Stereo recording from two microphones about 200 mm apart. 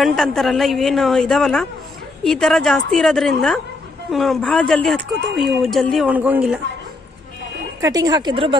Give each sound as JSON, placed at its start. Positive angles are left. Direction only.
{"t": 0.0, "sound": "speech", "side_deg": 0}
{"t": 7.8, "sound": "speech", "side_deg": -20}